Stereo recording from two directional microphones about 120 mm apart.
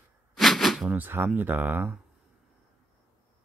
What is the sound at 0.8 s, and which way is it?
Speech, 15° right (ahead or behind).